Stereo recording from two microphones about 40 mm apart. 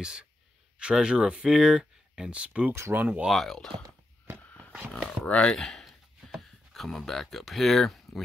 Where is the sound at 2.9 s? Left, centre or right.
Right.